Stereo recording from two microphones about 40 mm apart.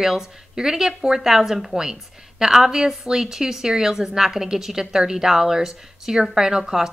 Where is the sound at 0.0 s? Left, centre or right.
Centre.